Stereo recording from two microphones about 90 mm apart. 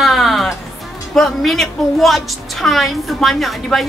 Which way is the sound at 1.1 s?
Centre (ahead or behind).